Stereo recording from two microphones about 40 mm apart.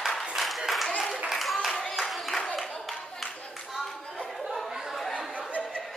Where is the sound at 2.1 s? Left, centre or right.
Centre.